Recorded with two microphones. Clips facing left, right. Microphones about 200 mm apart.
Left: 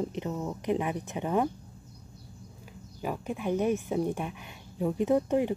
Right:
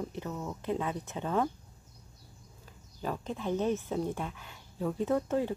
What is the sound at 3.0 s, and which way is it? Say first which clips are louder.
A woman's voice: left 2 dB; 10° left (ahead or behind).